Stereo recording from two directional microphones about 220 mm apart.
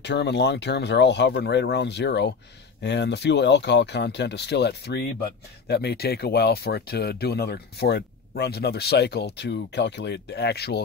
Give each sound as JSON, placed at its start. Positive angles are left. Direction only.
{"t": 0.0, "sound": "speech", "side_deg": 50}